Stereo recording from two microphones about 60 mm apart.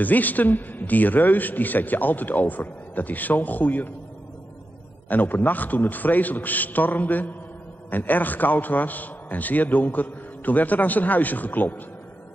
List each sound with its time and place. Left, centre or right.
0.0 s a man's voice: left
5.1 s a man's voice: left